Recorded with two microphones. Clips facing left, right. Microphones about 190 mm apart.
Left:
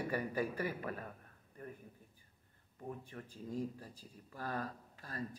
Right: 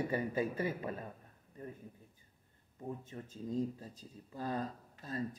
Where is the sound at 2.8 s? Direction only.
20° right (ahead or behind).